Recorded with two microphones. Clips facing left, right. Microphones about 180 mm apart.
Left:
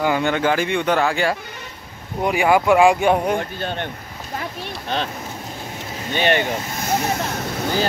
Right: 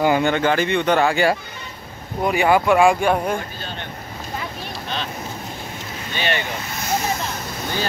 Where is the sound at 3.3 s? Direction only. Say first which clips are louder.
Left 5 dB; 55° left (ahead or behind).